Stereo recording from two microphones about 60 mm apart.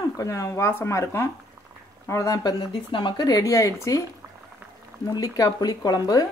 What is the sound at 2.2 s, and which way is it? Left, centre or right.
Speech, left.